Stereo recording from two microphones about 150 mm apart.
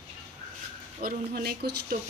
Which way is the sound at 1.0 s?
90° right.